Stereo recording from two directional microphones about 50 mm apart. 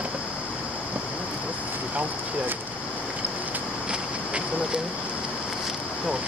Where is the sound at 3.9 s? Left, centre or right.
Centre.